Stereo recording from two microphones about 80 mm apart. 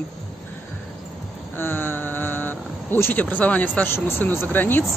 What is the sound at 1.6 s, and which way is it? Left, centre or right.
Speech, left.